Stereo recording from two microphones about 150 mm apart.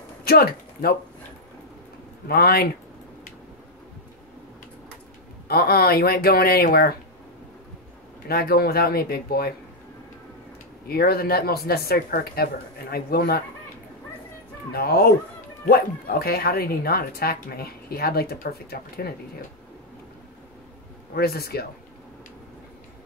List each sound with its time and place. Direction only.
0.2 s speech: 90° left
2.2 s speech: 90° left
5.5 s speech: 90° left
8.3 s speech: 90° left
10.9 s speech: 90° left
14.7 s speech: 90° left
21.1 s speech: 90° left